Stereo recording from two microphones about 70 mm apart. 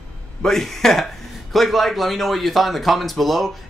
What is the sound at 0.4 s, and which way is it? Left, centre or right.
Speech, centre.